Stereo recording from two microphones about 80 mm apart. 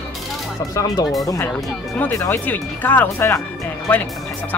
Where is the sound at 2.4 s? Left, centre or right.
Left.